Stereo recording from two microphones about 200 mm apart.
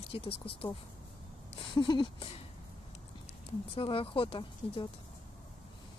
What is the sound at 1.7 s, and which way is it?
Speech, 25° left (ahead or behind).